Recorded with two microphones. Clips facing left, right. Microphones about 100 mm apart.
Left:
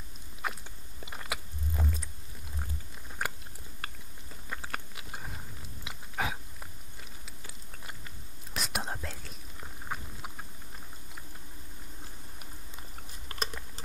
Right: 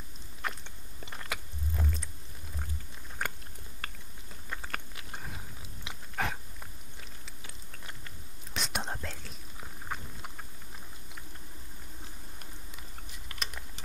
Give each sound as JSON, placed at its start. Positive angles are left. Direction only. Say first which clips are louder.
{"t": 0.4, "sound": "biting", "louder": "left 1 dB", "side_deg": 5}
{"t": 3.2, "sound": "biting", "louder": "left 1 dB", "side_deg": 5}
{"t": 3.8, "sound": "chewing", "louder": "left 1 dB", "side_deg": 5}
{"t": 4.5, "sound": "biting", "louder": "left 1 dB", "side_deg": 5}
{"t": 8.5, "sound": "whispering", "louder": "even", "side_deg": 5}
{"t": 9.8, "sound": "chewing", "louder": "left 1 dB", "side_deg": 5}
{"t": 13.3, "sound": "typing", "louder": "left 5 dB", "side_deg": 35}